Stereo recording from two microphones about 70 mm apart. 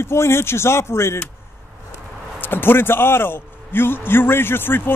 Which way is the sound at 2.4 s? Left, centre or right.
Left.